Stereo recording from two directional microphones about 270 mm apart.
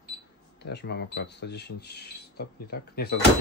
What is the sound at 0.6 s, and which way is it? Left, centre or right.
Speech, left.